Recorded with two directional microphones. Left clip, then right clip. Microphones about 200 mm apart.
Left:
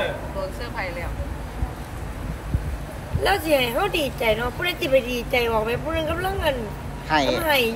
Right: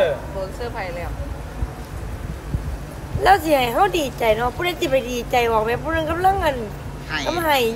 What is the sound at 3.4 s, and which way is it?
A woman's voice, 20° right (ahead or behind).